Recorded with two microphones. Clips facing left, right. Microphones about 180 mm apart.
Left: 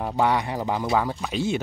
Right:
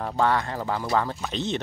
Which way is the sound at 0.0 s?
15° left (ahead or behind).